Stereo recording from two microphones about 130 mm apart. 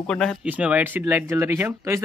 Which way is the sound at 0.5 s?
10° right (ahead or behind).